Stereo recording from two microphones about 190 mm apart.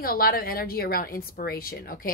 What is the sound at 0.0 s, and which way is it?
Speech, 50° left (ahead or behind).